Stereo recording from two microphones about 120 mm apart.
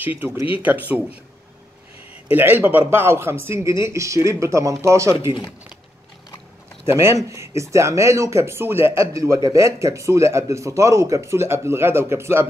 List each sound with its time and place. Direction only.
0.2 s speech: 15° right (ahead or behind)
2.3 s speech: 15° right (ahead or behind)
6.9 s speech: 20° right (ahead or behind)